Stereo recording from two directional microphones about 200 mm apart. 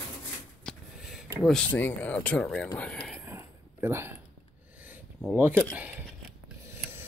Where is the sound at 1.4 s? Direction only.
5° left (ahead or behind).